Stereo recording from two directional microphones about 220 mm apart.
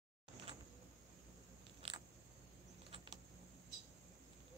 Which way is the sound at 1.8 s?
25° right (ahead or behind).